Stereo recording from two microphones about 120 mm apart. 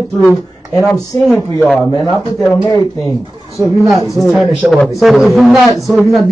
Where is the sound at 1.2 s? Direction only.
Centre (ahead or behind).